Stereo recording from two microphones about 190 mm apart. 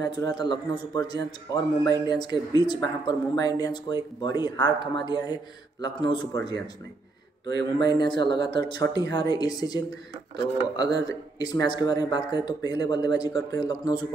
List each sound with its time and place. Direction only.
0.0 s speech: 20° left (ahead or behind)
7.5 s speech: 20° left (ahead or behind)
10.9 s speech: 65° right (ahead or behind)
11.3 s speech: 20° left (ahead or behind)